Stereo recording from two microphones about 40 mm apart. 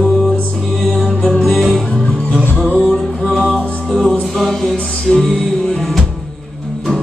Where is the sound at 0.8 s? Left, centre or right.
Centre.